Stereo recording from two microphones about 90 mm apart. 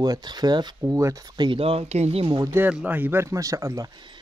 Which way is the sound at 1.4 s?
80° right.